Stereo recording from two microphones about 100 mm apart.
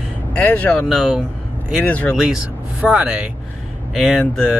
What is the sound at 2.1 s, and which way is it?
Speech, 5° right (ahead or behind).